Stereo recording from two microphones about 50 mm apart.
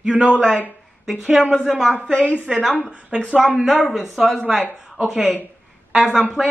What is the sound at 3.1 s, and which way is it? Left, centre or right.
Speech, centre.